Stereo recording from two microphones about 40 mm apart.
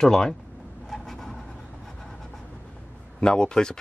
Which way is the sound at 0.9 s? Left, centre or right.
Centre.